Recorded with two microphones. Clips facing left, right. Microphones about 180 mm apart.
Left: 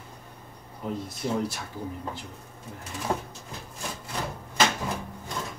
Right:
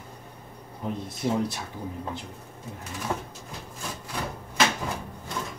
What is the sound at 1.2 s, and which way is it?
Speech, 10° right (ahead or behind).